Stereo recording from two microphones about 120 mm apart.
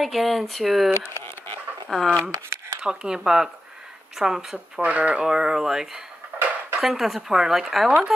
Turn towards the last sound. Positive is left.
turn(degrees=-5)  # may be behind; listen again after turning